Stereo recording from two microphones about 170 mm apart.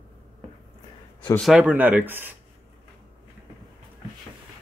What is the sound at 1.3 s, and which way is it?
Speech, centre (ahead or behind).